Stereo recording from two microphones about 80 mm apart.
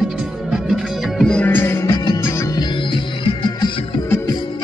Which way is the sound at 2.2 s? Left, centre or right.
Left.